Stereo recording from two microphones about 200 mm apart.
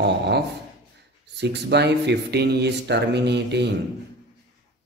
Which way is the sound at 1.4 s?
60° right (ahead or behind).